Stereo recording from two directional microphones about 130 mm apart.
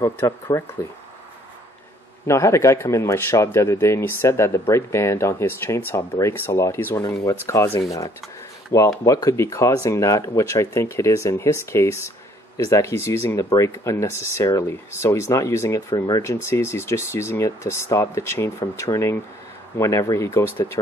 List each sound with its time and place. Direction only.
0.0 s speech: 25° left (ahead or behind)
2.2 s speech: 20° left (ahead or behind)